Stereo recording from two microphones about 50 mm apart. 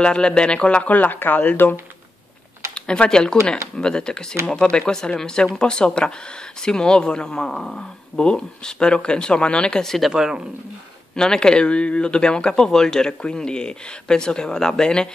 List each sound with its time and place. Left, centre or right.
0.0 s speech: centre; by 1.8 s left
2.7 s speech: centre
9.8 s speech: centre
10.1 s speech: centre
11.1 s speech: centre